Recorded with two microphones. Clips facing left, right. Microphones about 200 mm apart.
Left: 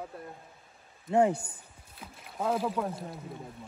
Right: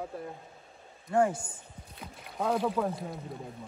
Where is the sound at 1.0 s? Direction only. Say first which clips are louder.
Left 2 dB; 20° left (ahead or behind).